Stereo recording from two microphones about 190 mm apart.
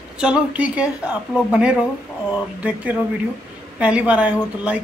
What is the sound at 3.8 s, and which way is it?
Speech, 5° right (ahead or behind).